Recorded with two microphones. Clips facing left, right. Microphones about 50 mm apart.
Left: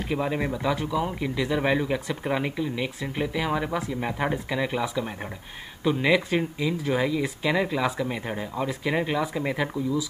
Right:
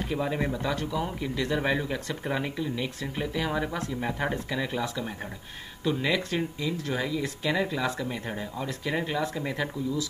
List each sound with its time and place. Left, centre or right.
0.1 s speech: centre